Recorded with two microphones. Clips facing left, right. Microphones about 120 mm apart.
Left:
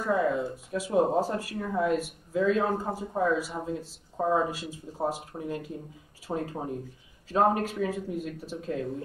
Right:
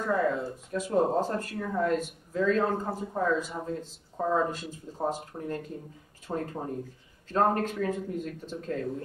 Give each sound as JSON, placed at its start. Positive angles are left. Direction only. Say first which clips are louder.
{"t": 0.0, "sound": "speech", "louder": "left 1 dB", "side_deg": 10}